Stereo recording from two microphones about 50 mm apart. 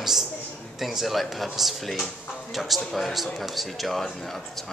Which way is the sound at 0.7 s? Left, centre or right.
Centre.